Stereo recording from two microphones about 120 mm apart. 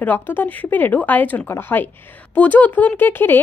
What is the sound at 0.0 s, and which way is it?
Speech, 15° left (ahead or behind).